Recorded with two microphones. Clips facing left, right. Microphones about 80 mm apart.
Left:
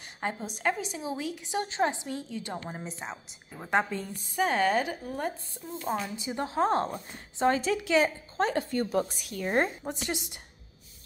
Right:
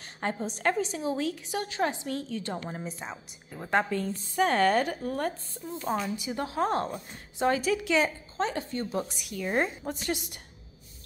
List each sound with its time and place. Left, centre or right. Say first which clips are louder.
0.4 s a woman's voice: right 4 dB; centre
6.1 s a woman's voice: left 1 dB; left
8.4 s a woman's voice: left 3 dB; left
9.1 s a woman's voice: left 1 dB; left